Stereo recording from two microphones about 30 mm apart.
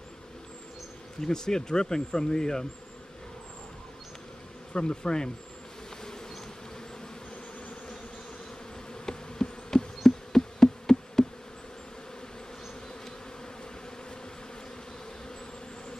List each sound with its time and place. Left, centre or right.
1.2 s speech: centre
4.7 s speech: left
9.0 s insect: left